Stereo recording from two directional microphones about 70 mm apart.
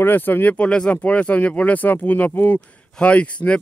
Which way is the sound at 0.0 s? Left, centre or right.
Left.